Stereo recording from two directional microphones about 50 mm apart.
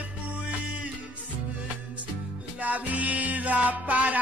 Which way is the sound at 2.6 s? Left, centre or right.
Right.